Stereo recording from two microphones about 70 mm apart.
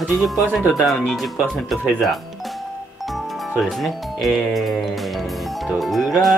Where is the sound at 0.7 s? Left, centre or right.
Centre.